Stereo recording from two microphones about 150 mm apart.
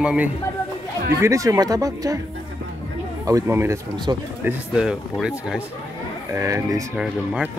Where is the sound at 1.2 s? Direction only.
20° right (ahead or behind).